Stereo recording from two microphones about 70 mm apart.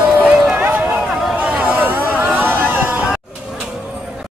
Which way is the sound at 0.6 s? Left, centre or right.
Right.